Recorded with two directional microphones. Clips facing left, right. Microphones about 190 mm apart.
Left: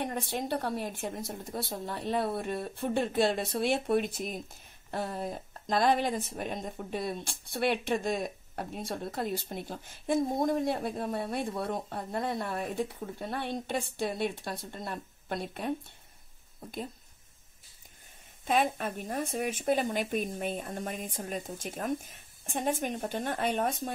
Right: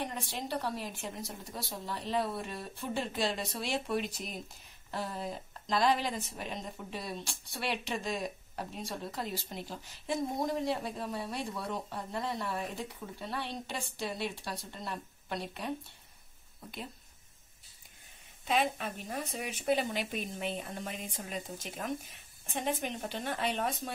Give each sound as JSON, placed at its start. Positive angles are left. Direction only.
{"t": 0.0, "sound": "a woman's voice", "side_deg": 50}
{"t": 18.4, "sound": "a woman's voice", "side_deg": 50}